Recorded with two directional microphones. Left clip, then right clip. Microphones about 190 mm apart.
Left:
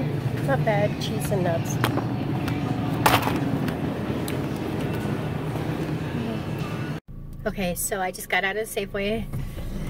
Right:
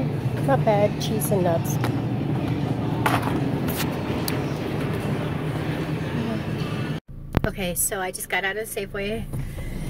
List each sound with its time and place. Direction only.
0.5 s speech: 15° right (ahead or behind)
3.0 s a sound: 25° left (ahead or behind)
7.5 s a woman's voice: 5° left (ahead or behind)